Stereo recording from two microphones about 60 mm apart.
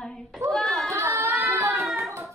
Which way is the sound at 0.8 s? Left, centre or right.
Right.